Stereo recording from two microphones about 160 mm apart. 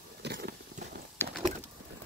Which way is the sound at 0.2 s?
85° right.